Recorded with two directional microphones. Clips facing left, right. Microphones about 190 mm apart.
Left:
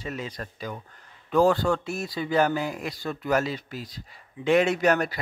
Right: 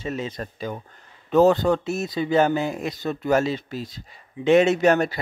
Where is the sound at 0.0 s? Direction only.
25° right (ahead or behind).